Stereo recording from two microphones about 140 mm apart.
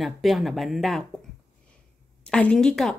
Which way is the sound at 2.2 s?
5° left (ahead or behind).